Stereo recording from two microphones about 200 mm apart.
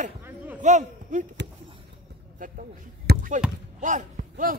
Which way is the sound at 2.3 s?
40° right (ahead or behind).